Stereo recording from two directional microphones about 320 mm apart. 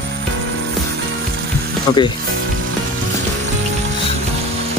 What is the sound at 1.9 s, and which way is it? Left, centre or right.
Speech, centre.